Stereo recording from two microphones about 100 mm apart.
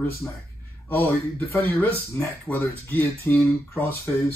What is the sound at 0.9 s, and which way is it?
Speech, 25° left (ahead or behind).